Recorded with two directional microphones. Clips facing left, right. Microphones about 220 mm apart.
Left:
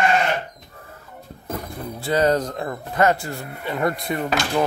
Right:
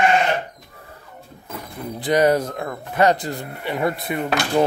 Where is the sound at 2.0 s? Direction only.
15° right (ahead or behind).